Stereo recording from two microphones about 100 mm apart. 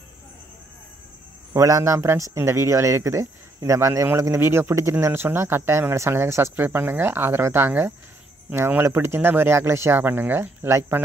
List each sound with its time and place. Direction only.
1.5 s a man's voice: 30° right (ahead or behind)